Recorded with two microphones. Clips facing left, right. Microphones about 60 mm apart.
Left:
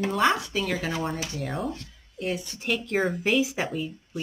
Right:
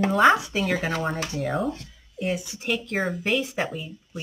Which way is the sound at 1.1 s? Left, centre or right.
Right.